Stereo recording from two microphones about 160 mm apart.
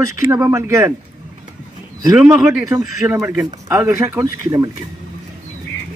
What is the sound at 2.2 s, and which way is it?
A man's voice, 10° right (ahead or behind).